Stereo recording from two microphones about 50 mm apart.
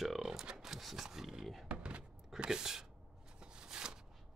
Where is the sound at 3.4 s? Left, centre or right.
Centre.